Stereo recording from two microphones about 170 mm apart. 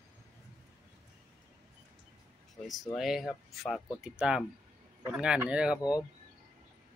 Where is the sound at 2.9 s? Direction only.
Centre (ahead or behind).